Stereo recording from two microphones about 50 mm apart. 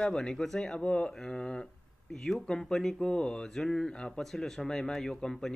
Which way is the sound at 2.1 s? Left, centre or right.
Centre.